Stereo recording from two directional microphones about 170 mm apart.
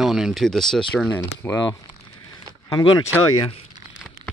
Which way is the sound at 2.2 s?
25° left (ahead or behind).